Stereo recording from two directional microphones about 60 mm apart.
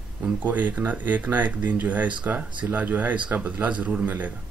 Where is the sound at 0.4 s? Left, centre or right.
Right.